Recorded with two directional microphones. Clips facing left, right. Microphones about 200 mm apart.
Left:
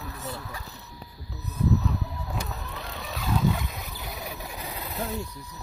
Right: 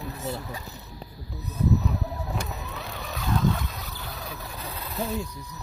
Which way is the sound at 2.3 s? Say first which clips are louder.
Right 2 dB; centre (ahead or behind).